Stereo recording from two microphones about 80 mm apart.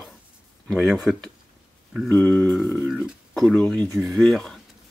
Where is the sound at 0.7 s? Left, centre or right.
Centre.